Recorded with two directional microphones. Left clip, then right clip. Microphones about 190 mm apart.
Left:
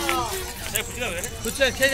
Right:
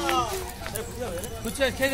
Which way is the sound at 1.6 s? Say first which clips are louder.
Left 4 dB; 60° right (ahead or behind).